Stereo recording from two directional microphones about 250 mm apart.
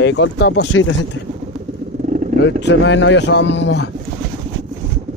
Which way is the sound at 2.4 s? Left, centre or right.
Left.